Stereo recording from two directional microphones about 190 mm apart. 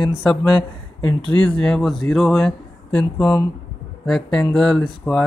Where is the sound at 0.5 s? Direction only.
25° left (ahead or behind).